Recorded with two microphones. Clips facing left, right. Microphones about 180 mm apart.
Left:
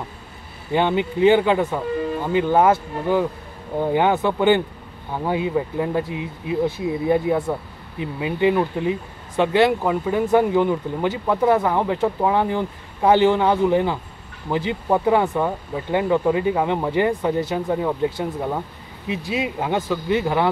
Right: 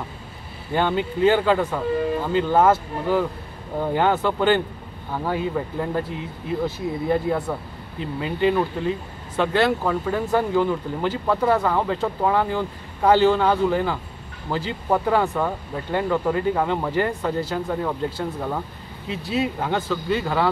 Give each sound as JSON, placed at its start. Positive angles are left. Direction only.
{"t": 0.7, "sound": "speech", "side_deg": 15}